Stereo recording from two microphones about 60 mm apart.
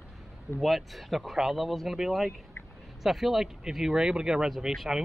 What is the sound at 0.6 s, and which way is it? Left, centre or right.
Speech, centre.